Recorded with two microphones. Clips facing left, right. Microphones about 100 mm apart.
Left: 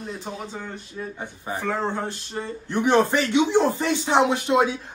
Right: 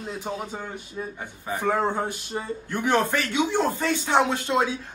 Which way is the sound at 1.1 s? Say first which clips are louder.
Left 1 dB; 20° left (ahead or behind).